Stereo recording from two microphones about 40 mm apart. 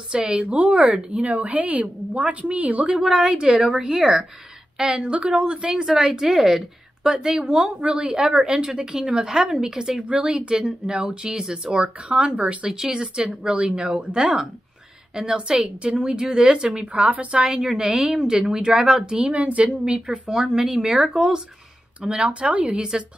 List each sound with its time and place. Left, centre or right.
0.1 s a woman's voice: right
3.1 s a woman's voice: centre
5.1 s speech: right
6.0 s a woman's voice: centre; by 12.7 s right
12.7 s a woman's voice: centre
16.8 s a woman's voice: right
17.5 s a woman's voice: centre
19.3 s a woman's voice: right
20.2 s a woman's voice: centre
22.0 s speech: right